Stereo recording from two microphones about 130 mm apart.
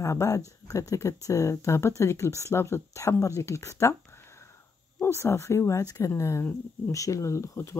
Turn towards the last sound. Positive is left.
turn(degrees=20)  # may be behind; listen again after turning